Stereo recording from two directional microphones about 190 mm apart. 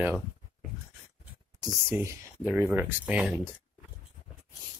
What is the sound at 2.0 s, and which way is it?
Speech, 10° right (ahead or behind).